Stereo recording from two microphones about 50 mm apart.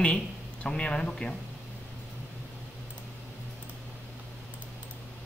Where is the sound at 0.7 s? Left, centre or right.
Left.